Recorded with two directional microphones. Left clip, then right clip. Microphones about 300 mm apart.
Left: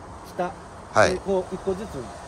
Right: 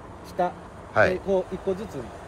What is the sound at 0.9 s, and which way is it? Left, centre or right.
Speech, centre.